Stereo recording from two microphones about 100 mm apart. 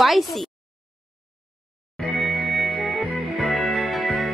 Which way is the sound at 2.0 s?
Centre (ahead or behind).